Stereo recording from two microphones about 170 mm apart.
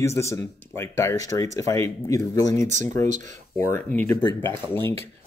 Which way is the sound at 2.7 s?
45° right (ahead or behind).